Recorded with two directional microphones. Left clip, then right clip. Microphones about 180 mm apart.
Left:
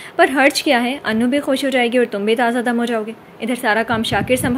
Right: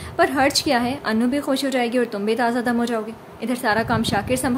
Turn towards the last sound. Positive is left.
turn(degrees=15)  # may be behind; listen again after turning